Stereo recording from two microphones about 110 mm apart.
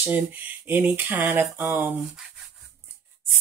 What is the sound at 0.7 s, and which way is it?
Speech, 15° right (ahead or behind).